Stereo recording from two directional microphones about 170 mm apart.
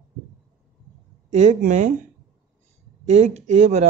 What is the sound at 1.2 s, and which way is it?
Speech, 45° right (ahead or behind).